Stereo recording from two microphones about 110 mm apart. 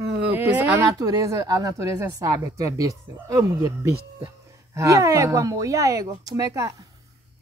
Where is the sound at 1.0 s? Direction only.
30° right (ahead or behind).